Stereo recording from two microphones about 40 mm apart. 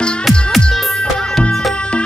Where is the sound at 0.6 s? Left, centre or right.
Centre.